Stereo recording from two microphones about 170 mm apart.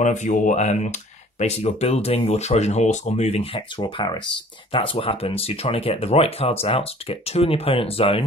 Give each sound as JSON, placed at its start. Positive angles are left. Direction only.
{"t": 0.0, "sound": "speech", "side_deg": 45}